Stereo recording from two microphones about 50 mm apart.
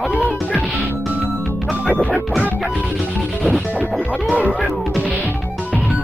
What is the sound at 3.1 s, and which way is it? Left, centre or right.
Music, left.